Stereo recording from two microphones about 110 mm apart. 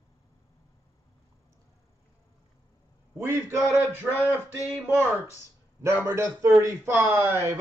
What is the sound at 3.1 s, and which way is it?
Speech, 25° right (ahead or behind).